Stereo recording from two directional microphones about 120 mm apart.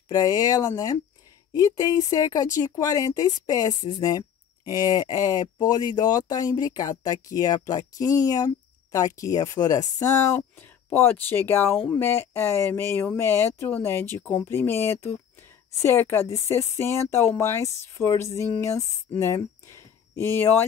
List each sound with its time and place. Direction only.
0.1 s speech: 30° left (ahead or behind)
10.3 s speech: 15° left (ahead or behind)